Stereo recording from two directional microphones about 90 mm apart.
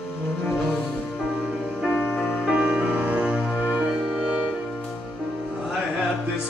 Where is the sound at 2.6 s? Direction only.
10° right (ahead or behind).